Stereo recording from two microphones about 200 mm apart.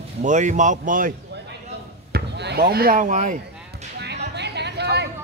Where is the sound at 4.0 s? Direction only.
55° right (ahead or behind).